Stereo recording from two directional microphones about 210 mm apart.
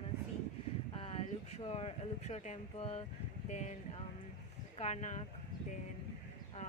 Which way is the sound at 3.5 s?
35° left (ahead or behind).